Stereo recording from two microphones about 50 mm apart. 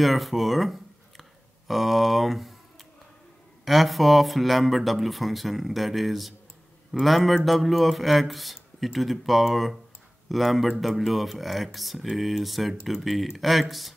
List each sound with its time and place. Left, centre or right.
0.0 s speech: centre